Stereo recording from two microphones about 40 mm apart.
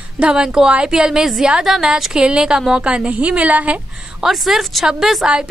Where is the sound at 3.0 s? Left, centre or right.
Right.